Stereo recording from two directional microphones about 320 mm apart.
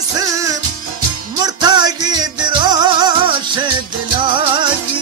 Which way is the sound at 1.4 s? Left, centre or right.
Centre.